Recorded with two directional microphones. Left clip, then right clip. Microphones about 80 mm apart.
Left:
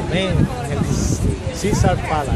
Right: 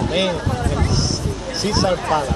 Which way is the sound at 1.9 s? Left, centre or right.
Left.